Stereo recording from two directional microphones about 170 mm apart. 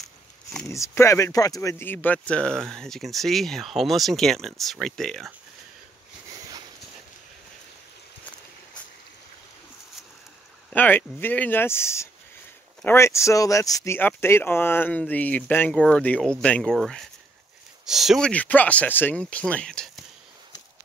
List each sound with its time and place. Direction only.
0.7 s speech: 15° left (ahead or behind)
10.7 s speech: 10° left (ahead or behind)